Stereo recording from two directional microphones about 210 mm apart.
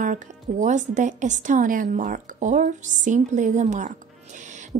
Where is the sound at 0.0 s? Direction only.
35° right (ahead or behind).